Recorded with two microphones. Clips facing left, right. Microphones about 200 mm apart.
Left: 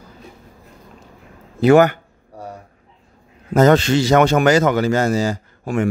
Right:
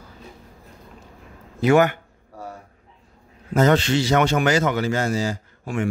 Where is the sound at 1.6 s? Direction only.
35° left (ahead or behind).